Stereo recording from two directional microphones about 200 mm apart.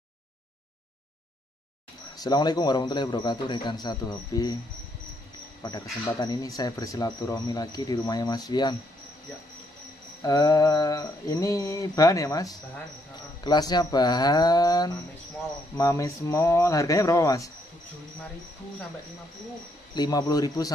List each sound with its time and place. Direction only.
2.1 s speech: 20° left (ahead or behind)
5.6 s speech: 20° left (ahead or behind)
10.2 s mantra: 20° left (ahead or behind)
13.4 s speech: 20° left (ahead or behind)
15.8 s mantra: 15° left (ahead or behind)
19.9 s speech: 20° left (ahead or behind)